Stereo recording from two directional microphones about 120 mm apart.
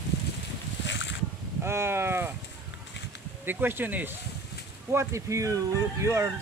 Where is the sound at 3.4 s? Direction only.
15° right (ahead or behind).